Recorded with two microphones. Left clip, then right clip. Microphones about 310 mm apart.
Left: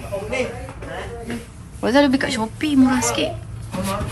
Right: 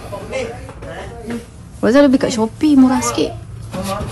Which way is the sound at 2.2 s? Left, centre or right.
Right.